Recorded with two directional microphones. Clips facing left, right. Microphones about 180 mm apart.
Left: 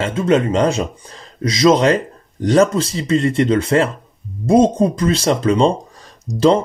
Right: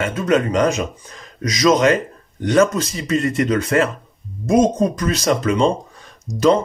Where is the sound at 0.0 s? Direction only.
25° left (ahead or behind).